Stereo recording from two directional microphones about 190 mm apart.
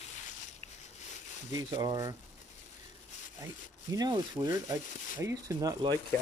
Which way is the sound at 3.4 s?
20° right (ahead or behind).